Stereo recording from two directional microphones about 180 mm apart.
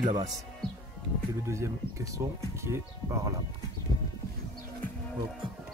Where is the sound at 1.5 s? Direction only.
15° right (ahead or behind).